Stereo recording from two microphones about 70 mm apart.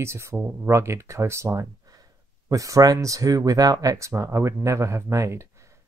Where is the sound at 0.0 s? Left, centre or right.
Right.